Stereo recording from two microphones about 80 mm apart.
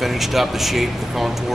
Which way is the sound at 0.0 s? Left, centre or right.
Centre.